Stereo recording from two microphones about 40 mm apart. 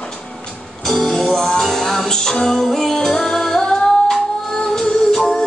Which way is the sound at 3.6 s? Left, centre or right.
Left.